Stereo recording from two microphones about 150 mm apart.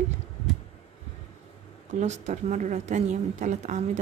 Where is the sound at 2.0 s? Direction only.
50° right (ahead or behind).